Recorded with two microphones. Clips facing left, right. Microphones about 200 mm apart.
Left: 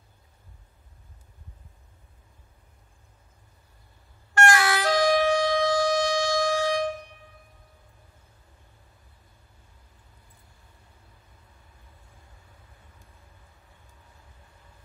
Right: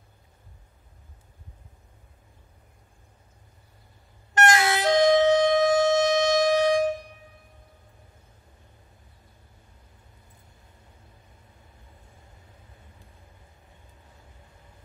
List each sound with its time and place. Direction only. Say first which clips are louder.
4.3 s vehicle: right 1 dB; 20° right (ahead or behind)